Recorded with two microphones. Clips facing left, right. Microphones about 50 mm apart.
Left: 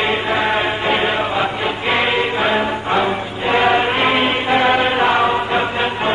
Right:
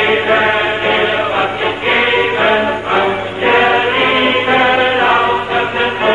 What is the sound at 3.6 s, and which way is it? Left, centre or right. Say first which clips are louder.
Chant: right 3 dB; centre.